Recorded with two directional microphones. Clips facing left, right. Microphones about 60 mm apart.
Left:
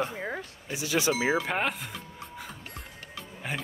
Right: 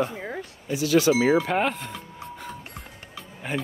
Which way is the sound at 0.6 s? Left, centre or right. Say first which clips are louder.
Right 8 dB; left.